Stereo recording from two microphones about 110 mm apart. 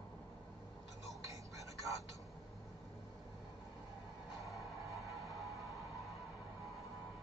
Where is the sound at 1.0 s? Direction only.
30° right (ahead or behind).